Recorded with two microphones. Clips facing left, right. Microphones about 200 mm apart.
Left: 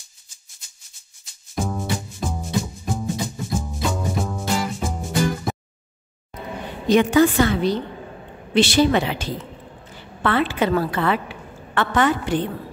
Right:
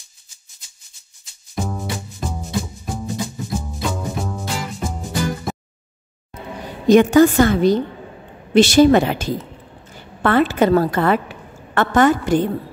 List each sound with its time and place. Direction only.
1.5 s music: centre (ahead or behind)
6.9 s a woman's voice: 45° right (ahead or behind)